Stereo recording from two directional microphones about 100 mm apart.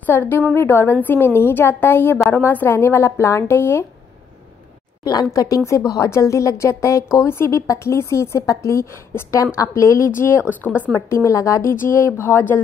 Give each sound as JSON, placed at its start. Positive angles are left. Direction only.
{"t": 0.0, "sound": "a woman's voice", "side_deg": 20}
{"t": 5.0, "sound": "a woman's voice", "side_deg": 35}